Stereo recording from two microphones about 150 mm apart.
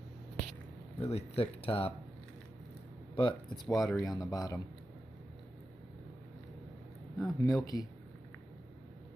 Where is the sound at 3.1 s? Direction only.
30° left (ahead or behind).